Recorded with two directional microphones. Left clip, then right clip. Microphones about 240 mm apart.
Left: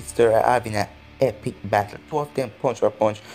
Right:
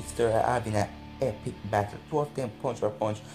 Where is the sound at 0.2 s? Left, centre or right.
Left.